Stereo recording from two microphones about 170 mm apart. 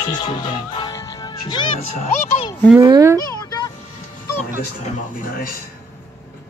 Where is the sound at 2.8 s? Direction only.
20° right (ahead or behind).